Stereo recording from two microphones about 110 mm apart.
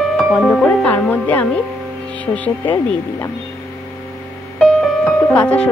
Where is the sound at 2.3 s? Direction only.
15° left (ahead or behind).